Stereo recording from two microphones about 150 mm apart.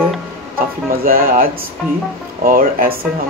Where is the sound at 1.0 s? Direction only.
75° right (ahead or behind).